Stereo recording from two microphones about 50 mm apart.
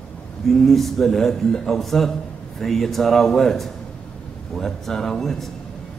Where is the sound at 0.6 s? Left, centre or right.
Centre.